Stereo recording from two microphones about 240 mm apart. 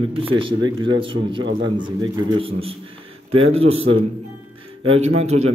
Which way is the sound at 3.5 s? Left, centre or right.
Right.